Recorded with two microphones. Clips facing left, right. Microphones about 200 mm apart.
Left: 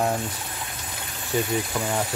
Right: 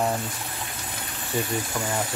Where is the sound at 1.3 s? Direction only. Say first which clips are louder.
Left 3 dB; centre (ahead or behind).